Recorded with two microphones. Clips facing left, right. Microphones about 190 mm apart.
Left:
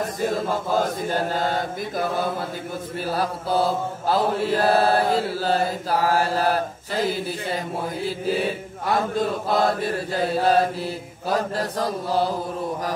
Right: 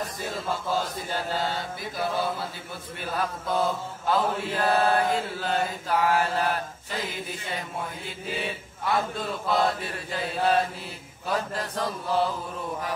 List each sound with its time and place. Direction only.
0.2 s chant: 45° left (ahead or behind)
3.0 s mantra: 35° left (ahead or behind)